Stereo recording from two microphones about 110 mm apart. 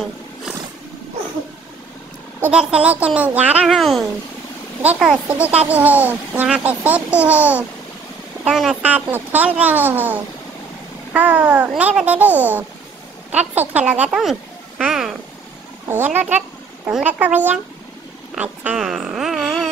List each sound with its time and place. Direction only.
2.5 s a child's voice: 10° right (ahead or behind)
3.6 s a child's voice: centre (ahead or behind)
8.8 s a child's voice: 15° right (ahead or behind)
14.2 s a sound: 5° right (ahead or behind)
15.9 s a child's voice: 15° right (ahead or behind)
18.8 s a sound: 5° right (ahead or behind)